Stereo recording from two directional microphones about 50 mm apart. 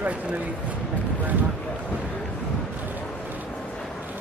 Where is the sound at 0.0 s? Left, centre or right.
Right.